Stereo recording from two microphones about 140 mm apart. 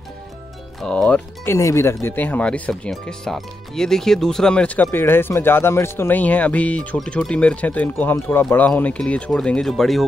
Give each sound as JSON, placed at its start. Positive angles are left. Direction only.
{"t": 0.7, "sound": "speech", "side_deg": 5}